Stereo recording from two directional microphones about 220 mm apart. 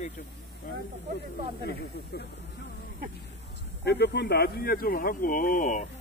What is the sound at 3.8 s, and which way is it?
Speech, 50° left (ahead or behind).